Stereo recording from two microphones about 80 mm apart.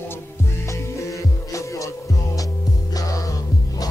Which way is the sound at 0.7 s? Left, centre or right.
Left.